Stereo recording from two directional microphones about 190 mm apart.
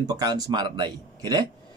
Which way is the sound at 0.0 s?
20° right (ahead or behind).